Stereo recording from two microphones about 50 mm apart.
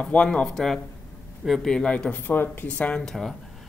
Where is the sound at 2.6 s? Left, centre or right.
Left.